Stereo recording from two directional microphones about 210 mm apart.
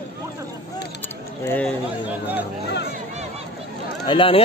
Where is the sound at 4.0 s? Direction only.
25° left (ahead or behind).